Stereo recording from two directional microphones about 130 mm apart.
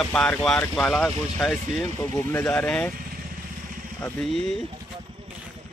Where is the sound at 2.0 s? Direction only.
20° left (ahead or behind).